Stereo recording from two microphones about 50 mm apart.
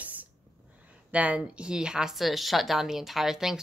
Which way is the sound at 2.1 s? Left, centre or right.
Centre.